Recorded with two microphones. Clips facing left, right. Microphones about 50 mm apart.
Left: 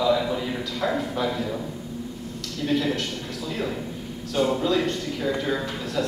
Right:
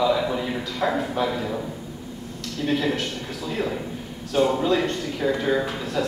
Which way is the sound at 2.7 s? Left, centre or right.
Centre.